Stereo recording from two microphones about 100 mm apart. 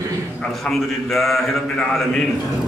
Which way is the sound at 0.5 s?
Centre (ahead or behind).